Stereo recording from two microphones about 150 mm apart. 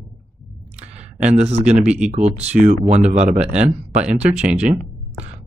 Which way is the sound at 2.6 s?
55° right (ahead or behind).